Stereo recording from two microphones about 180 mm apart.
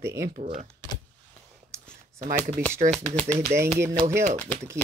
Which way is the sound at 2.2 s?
50° right (ahead or behind).